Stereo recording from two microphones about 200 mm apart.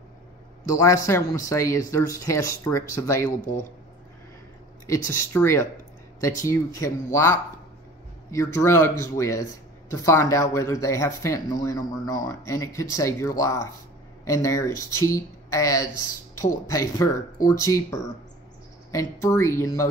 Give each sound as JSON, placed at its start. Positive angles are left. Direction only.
{"t": 0.7, "sound": "speech", "side_deg": 15}
{"t": 4.8, "sound": "speech", "side_deg": 15}